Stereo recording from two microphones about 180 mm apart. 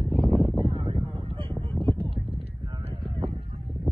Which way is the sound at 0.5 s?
25° right (ahead or behind).